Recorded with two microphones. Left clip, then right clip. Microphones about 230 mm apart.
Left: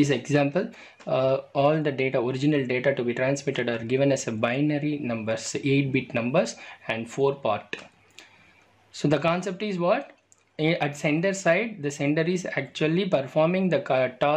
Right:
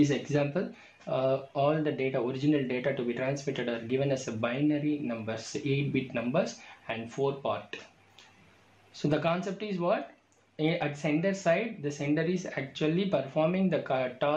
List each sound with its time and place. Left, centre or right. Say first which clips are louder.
0.0 s speech: left 5 dB; left
8.9 s speech: left 5 dB; left